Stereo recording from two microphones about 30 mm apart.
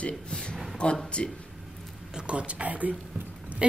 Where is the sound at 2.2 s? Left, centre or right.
Right.